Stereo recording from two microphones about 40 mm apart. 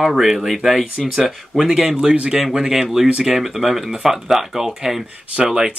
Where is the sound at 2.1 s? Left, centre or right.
Right.